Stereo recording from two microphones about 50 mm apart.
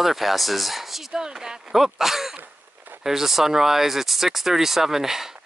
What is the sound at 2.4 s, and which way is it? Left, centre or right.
Cough, right.